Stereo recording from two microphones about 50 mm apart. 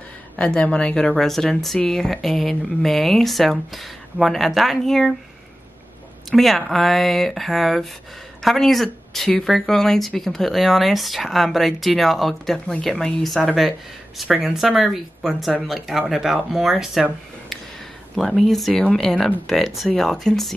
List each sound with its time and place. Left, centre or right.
0.6 s speech: left
1.1 s speech: centre
6.3 s speech: centre
18.1 s speech: centre
19.6 s speech: centre
19.9 s speech: centre